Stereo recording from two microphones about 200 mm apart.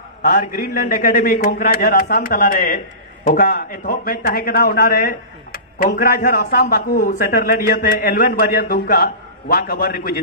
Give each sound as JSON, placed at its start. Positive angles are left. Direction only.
{"t": 0.2, "sound": "a man's voice", "side_deg": 45}